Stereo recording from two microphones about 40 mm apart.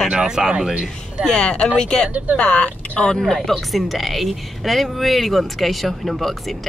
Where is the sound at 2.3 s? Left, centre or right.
Left.